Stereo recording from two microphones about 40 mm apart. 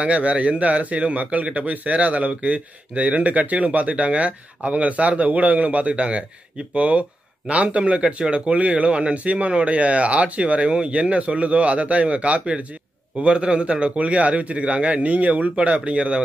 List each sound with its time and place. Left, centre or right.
0.0 s a man's voice: right